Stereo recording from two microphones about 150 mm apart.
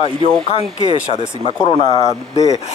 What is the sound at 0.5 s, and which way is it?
Speech, 40° left (ahead or behind).